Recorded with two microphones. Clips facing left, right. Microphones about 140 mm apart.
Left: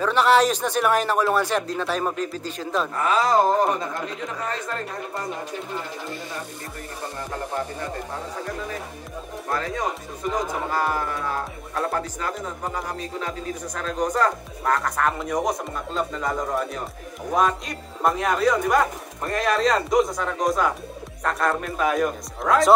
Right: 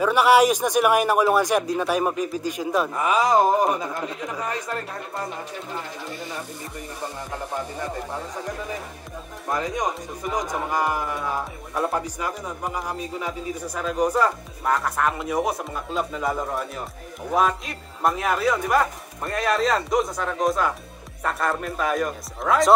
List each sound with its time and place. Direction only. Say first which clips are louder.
0.0 s speech: right 2 dB; 10° right (ahead or behind)
9.5 s speech: right 1 dB; 15° right (ahead or behind); by 22.8 s centre (ahead or behind)